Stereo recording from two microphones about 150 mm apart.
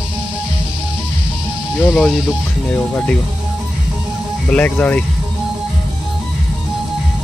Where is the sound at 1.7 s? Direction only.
Centre (ahead or behind).